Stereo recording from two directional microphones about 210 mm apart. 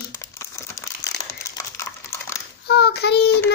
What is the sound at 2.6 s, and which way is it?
Child singing, 50° left (ahead or behind).